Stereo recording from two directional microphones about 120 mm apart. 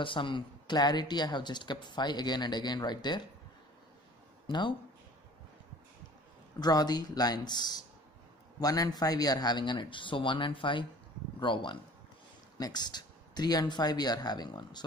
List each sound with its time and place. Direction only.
0.0 s speech: 45° left (ahead or behind)
4.5 s speech: 40° left (ahead or behind)
6.6 s speech: 35° left (ahead or behind)